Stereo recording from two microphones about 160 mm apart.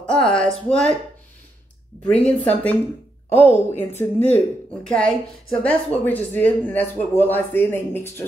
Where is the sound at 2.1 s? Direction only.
10° left (ahead or behind).